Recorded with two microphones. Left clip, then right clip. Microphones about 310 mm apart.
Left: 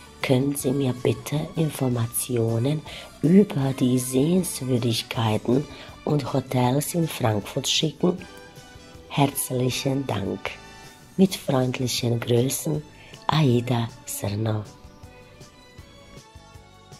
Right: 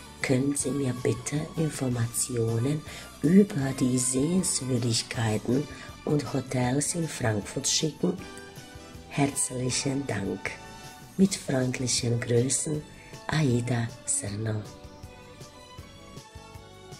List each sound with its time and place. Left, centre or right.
0.2 s speech: centre
9.1 s speech: centre